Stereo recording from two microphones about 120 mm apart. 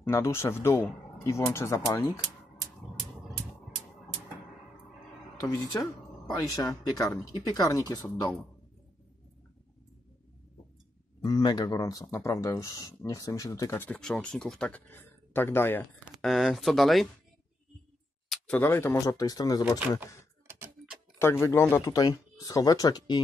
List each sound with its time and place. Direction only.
0.1 s speech: 25° left (ahead or behind)
5.4 s speech: 30° left (ahead or behind)
11.2 s speech: 35° left (ahead or behind)
13.8 s speech: 5° left (ahead or behind)
16.2 s speech: centre (ahead or behind)
18.5 s speech: 20° left (ahead or behind)
20.6 s tick-tock: 10° right (ahead or behind)
21.2 s speech: 20° left (ahead or behind)